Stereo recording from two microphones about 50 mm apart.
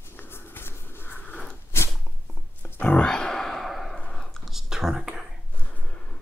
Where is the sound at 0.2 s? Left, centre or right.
Left.